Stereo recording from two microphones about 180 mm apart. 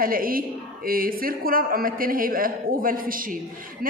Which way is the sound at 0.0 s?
50° right (ahead or behind).